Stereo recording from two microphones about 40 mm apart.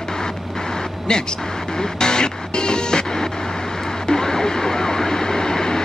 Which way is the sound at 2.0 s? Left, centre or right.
Centre.